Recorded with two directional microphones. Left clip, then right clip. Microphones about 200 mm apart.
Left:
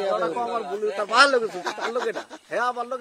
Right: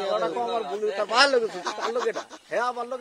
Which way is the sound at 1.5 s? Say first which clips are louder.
Left 1 dB; 35° left (ahead or behind).